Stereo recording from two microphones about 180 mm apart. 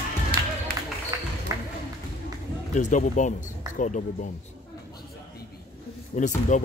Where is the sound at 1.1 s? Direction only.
20° right (ahead or behind).